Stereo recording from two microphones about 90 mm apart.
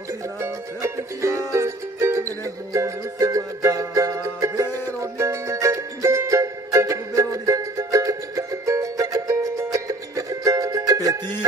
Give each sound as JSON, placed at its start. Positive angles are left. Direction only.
{"t": 0.4, "sound": "music", "side_deg": -35}